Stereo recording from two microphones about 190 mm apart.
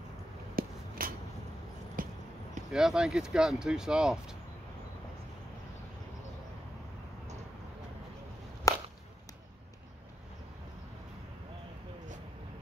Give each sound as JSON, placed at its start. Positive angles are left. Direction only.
{"t": 0.6, "sound": "a sound", "side_deg": -50}
{"t": 2.7, "sound": "speech", "side_deg": -5}
{"t": 8.7, "sound": "whip", "side_deg": 20}